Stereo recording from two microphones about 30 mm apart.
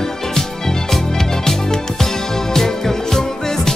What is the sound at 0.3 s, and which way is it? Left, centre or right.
Music, centre.